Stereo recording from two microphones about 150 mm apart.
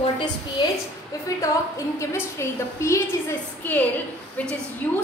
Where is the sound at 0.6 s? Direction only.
30° left (ahead or behind).